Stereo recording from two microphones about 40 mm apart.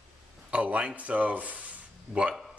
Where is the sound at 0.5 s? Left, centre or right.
Right.